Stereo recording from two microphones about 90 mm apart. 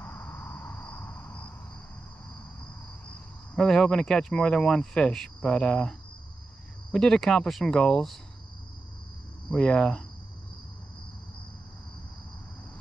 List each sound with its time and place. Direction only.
0.0 s a sound: 20° left (ahead or behind)
3.5 s speech: 5° left (ahead or behind)
9.5 s speech: 10° left (ahead or behind)